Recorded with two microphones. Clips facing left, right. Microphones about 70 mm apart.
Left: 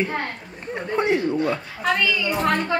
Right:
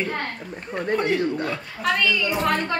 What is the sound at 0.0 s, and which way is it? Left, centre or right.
Speech, centre.